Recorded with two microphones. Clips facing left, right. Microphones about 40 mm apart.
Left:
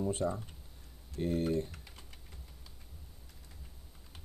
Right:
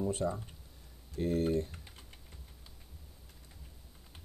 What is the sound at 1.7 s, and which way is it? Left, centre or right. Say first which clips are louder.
Typing: even; right.